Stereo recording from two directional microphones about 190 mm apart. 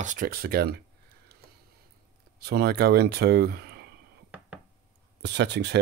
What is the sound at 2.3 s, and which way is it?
Speech, 55° right (ahead or behind).